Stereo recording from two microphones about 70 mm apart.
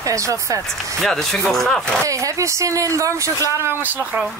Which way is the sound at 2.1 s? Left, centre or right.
Right.